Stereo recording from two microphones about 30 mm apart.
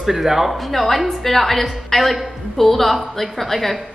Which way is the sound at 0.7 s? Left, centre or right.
Centre.